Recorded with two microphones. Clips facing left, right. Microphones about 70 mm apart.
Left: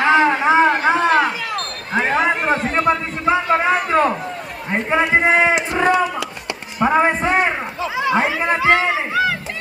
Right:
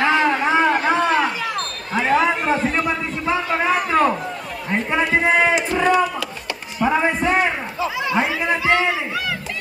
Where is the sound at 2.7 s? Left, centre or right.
Left.